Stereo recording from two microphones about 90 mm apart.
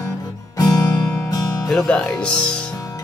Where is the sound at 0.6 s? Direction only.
40° left (ahead or behind).